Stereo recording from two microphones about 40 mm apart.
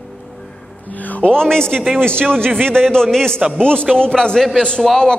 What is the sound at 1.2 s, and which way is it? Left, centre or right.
Speech, centre.